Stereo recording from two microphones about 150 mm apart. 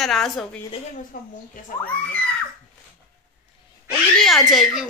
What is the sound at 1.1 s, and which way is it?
Speech, 70° left (ahead or behind).